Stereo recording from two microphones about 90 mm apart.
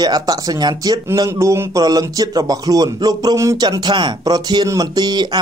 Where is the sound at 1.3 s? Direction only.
30° right (ahead or behind).